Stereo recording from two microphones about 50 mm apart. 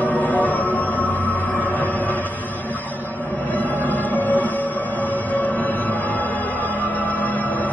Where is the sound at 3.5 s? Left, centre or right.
Left.